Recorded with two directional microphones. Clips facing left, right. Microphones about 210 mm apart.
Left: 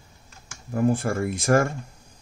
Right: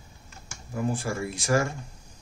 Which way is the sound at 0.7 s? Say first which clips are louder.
Left 6 dB; 55° left (ahead or behind).